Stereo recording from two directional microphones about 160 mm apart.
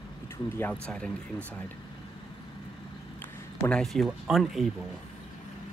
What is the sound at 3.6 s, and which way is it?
Speech, 5° left (ahead or behind).